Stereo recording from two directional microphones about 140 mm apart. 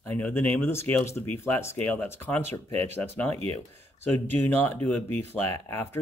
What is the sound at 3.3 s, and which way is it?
Speech, 50° right (ahead or behind).